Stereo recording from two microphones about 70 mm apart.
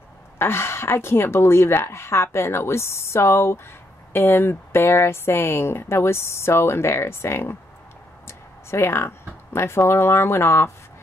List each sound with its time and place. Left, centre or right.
0.4 s speech: left